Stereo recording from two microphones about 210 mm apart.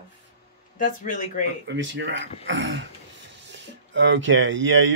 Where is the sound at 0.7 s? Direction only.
35° left (ahead or behind).